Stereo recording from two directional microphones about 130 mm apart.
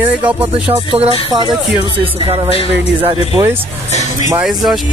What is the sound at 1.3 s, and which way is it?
Speech, 35° right (ahead or behind).